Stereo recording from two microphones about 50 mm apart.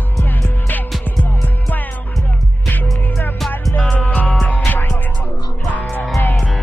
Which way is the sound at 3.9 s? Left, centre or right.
Left.